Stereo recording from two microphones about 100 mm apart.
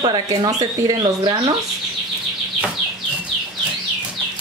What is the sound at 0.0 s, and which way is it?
Speech, 45° right (ahead or behind).